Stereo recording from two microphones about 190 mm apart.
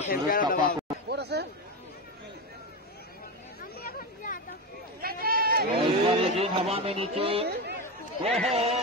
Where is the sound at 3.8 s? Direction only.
45° left (ahead or behind).